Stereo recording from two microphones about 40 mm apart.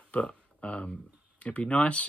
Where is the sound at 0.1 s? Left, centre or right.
Left.